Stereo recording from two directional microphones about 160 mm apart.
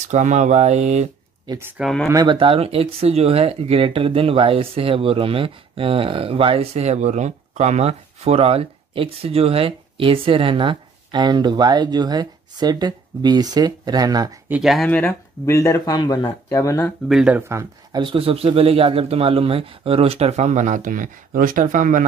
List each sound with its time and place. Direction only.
0.1 s speech: 50° right (ahead or behind)
1.5 s speech: 15° right (ahead or behind)
1.8 s speech: centre (ahead or behind)
2.0 s speech: 25° right (ahead or behind)
14.5 s speech: centre (ahead or behind)
14.9 s speech: 10° left (ahead or behind)
17.1 s speech: 5° right (ahead or behind)
17.4 s speech: 15° right (ahead or behind)
18.0 s speech: 35° right (ahead or behind); by 22.0 s 55° right (ahead or behind)